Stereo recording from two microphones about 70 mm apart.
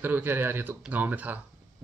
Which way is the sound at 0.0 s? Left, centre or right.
Right.